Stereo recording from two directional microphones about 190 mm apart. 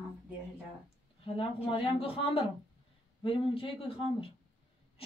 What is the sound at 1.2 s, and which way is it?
Speech, 30° left (ahead or behind).